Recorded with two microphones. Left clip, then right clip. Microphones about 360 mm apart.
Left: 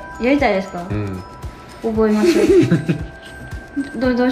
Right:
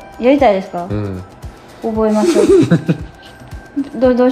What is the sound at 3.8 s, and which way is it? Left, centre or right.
Music, centre.